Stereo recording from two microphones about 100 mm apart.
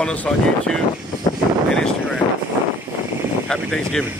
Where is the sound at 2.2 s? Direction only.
65° left (ahead or behind).